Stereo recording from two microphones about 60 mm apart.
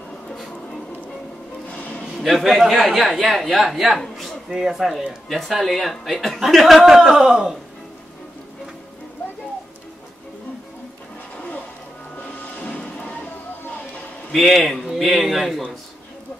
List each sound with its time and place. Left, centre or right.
1.7 s music: left
2.0 s a man's voice: centre
4.5 s speech: centre
11.3 s music: left
14.3 s a man's voice: centre